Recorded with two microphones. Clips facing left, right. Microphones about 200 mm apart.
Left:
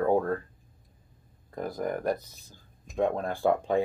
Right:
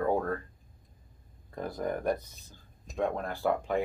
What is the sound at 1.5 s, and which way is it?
Speech, 10° left (ahead or behind).